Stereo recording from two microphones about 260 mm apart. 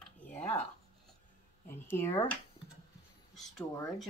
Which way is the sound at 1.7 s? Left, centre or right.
Centre.